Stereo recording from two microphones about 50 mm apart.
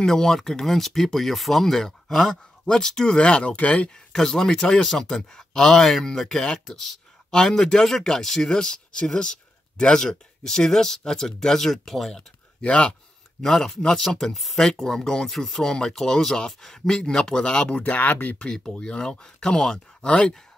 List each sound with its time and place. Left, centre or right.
0.0 s speech: centre
3.2 s speech: left
4.1 s speech: centre
12.6 s speech: centre
17.7 s speech: left
18.4 s speech: centre